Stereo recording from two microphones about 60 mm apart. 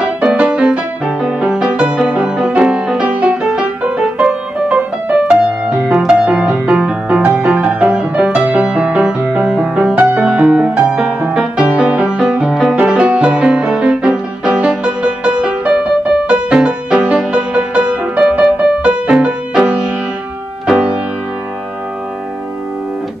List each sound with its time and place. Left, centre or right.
0.0 s music: centre